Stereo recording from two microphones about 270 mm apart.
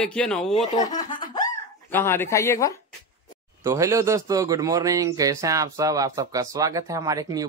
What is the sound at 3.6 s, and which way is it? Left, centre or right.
Speech, centre.